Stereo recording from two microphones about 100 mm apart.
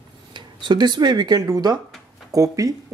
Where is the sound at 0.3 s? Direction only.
45° right (ahead or behind).